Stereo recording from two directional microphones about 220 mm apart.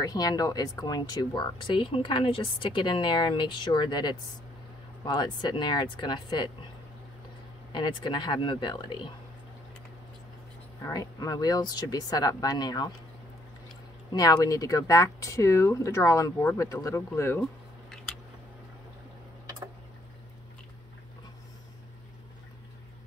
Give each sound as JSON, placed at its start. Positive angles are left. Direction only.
{"t": 0.0, "sound": "speech", "side_deg": 15}
{"t": 7.7, "sound": "speech", "side_deg": 20}
{"t": 10.8, "sound": "speech", "side_deg": 15}
{"t": 14.1, "sound": "speech", "side_deg": 15}